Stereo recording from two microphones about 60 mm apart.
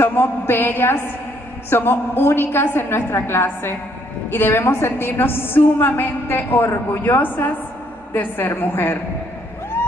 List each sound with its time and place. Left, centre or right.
0.0 s a woman's voice: left